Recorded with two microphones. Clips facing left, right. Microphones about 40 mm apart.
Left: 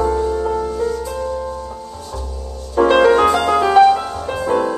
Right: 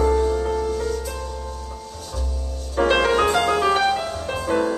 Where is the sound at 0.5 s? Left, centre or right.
Centre.